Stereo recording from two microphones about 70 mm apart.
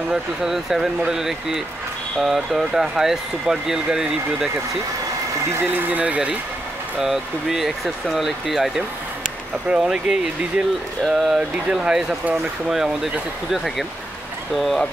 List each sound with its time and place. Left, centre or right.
0.1 s speech: centre
5.6 s speech: right
7.0 s speech: centre
9.7 s speech: centre
14.5 s speech: centre